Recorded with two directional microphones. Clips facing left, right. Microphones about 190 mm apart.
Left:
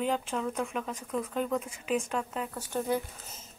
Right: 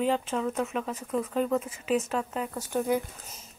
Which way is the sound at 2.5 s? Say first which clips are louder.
Right 3 dB; 15° right (ahead or behind).